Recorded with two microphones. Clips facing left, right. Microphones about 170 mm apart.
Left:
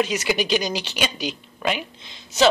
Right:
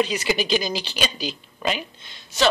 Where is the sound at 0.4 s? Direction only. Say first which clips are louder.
Left 1 dB; 65° left (ahead or behind).